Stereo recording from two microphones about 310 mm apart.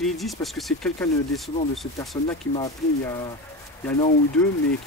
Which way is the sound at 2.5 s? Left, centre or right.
Centre.